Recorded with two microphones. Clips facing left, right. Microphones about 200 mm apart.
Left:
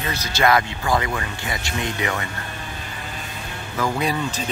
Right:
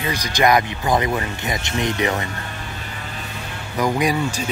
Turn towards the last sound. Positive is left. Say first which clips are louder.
# right 3 dB
turn(degrees=-10)  # may be behind; listen again after turning